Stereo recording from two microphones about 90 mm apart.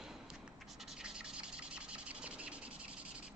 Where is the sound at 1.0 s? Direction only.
10° right (ahead or behind).